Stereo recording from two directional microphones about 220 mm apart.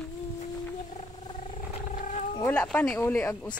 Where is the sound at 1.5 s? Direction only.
30° left (ahead or behind).